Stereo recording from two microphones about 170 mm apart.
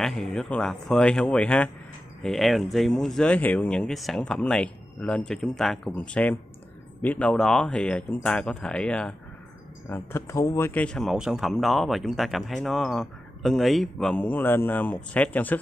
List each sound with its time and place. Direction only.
0.0 s speech: 5° left (ahead or behind)